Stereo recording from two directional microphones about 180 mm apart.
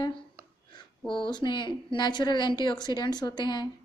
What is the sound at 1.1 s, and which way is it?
A woman's voice, 25° left (ahead or behind).